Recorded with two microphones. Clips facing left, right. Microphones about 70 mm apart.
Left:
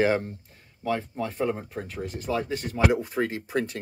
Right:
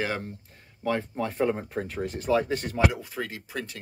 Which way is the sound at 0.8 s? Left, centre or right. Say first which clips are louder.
Even; right.